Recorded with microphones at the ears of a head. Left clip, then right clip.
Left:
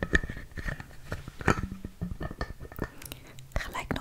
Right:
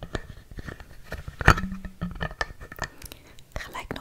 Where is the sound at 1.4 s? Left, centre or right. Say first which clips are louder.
Right 8 dB; right.